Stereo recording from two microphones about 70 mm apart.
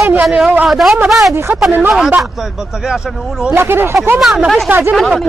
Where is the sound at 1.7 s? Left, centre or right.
Right.